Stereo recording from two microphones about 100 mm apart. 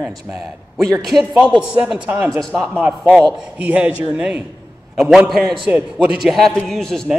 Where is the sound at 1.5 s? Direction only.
10° right (ahead or behind).